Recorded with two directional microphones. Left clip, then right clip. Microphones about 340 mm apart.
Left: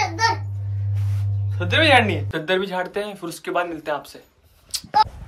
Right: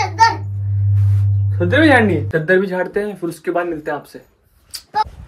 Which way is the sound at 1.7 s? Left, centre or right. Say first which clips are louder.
Right 3 dB; centre.